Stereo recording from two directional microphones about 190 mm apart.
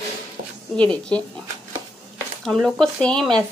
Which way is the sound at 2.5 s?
Centre (ahead or behind).